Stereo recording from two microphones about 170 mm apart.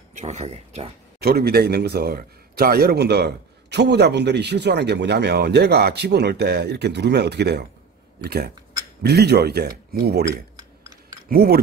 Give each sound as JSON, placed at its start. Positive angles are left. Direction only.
{"t": 0.1, "sound": "speech", "side_deg": -40}
{"t": 1.2, "sound": "a man's voice", "side_deg": -65}